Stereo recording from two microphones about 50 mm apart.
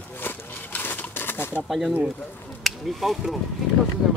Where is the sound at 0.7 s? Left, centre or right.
Left.